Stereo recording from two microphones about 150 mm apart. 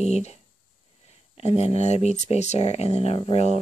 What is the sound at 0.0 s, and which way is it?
Speech, 45° left (ahead or behind).